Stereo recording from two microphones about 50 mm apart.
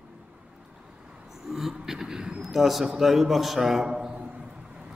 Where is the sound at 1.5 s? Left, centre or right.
Centre.